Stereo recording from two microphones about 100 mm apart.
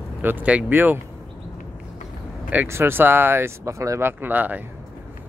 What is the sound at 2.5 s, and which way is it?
Speech, 20° right (ahead or behind).